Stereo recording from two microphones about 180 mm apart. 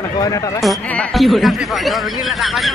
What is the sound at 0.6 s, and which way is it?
A man's voice, centre (ahead or behind).